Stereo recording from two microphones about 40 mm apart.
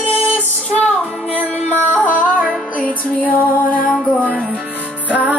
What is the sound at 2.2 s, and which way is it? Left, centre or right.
Music, right.